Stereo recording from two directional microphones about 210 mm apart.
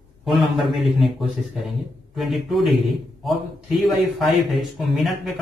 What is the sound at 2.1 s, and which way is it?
A man's voice, centre (ahead or behind).